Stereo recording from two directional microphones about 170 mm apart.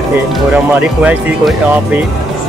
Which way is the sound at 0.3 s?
10° right (ahead or behind).